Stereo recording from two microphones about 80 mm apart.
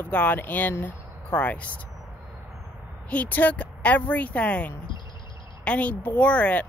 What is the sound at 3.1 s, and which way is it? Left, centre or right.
Speech, centre.